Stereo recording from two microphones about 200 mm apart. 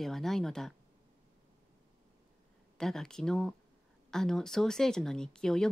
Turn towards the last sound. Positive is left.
turn(degrees=5)  # may be behind; listen again after turning